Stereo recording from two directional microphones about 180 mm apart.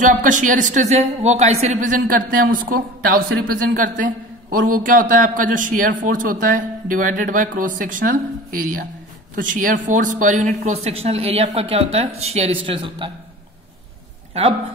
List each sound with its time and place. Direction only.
0.0 s a woman's voice: 45° right (ahead or behind); by 13.1 s 30° right (ahead or behind)